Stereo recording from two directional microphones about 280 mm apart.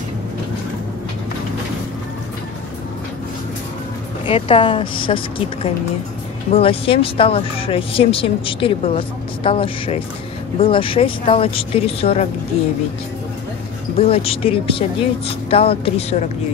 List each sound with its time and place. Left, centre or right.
4.3 s speech: centre
13.9 s speech: left